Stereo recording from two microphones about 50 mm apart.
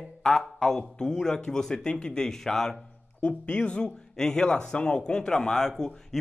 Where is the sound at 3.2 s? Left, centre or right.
Left.